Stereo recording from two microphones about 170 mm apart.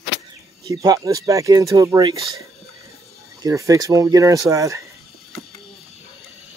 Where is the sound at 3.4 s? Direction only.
20° right (ahead or behind).